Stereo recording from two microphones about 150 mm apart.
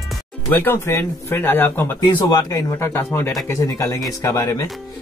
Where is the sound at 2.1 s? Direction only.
25° left (ahead or behind).